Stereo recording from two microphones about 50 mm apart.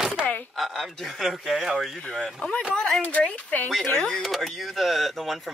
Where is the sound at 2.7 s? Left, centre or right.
Centre.